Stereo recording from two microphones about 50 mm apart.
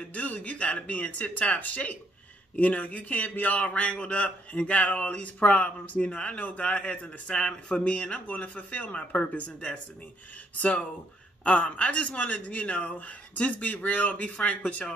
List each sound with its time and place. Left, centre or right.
0.1 s a man's voice: left
11.4 s a man's voice: left